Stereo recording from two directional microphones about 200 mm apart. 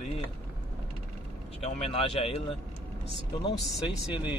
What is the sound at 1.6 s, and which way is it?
Speech, 30° left (ahead or behind).